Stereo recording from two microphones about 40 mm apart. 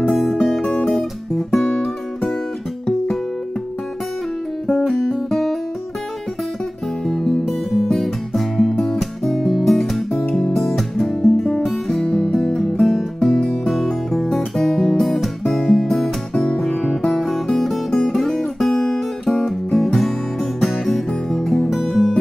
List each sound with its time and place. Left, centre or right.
0.0 s music: centre
0.8 s guitar: centre
4.7 s music: centre
7.1 s music: centre
7.9 s music: centre
12.0 s music: centre
13.7 s music: centre
18.4 s guitar: centre
19.7 s music: centre